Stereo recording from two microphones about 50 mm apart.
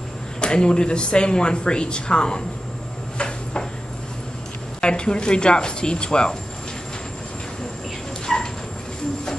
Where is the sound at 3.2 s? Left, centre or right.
Centre.